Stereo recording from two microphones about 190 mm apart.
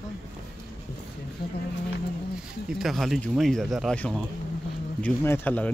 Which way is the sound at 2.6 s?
Centre (ahead or behind).